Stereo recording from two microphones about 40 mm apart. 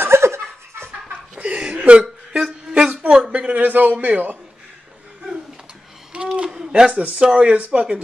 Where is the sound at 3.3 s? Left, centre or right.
Right.